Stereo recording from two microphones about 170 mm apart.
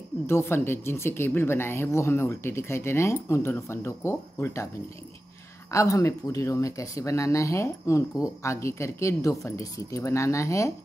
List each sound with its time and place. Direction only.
0.3 s speech: 15° left (ahead or behind)
5.7 s speech: 20° left (ahead or behind)